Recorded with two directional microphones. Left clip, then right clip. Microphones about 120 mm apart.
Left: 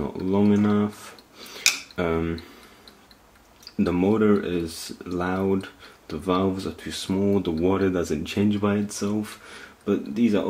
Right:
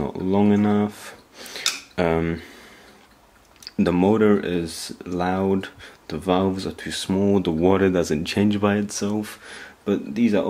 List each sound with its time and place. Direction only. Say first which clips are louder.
0.0 s speech: right 2 dB; 25° right (ahead or behind)
2.0 s speech: right 4 dB; 30° right (ahead or behind)
3.7 s speech: right 3 dB; 35° right (ahead or behind)